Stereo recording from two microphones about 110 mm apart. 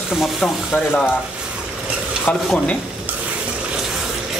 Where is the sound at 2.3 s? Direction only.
10° left (ahead or behind).